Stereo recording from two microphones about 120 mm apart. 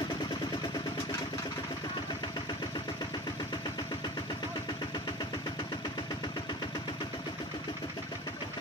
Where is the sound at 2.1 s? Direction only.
35° left (ahead or behind).